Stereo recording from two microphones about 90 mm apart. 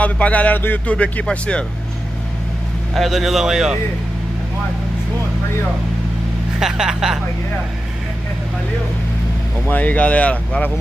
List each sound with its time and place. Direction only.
0.0 s speech: 15° left (ahead or behind)
2.9 s a man's voice: centre (ahead or behind)
6.6 s speech: 5° right (ahead or behind)
9.7 s speech: 20° left (ahead or behind)